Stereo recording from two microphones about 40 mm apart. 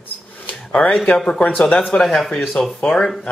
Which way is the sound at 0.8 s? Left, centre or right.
Left.